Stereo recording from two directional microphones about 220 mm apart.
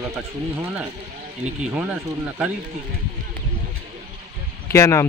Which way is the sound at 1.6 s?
5° right (ahead or behind).